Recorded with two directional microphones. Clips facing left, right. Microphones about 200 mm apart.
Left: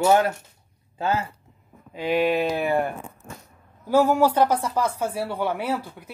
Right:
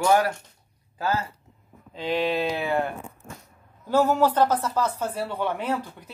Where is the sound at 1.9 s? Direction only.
10° left (ahead or behind).